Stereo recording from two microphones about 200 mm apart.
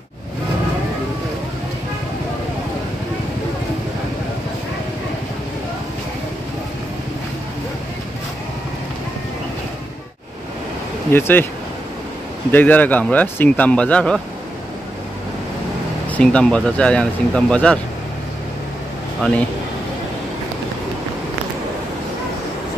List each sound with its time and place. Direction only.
11.1 s speech: 10° left (ahead or behind)
12.4 s speech: 10° left (ahead or behind)
16.1 s speech: 5° left (ahead or behind)